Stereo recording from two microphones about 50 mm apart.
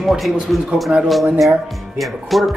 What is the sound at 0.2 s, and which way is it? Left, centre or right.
Speech, centre.